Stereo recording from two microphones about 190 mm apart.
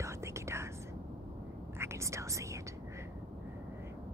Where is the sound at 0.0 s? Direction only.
15° right (ahead or behind).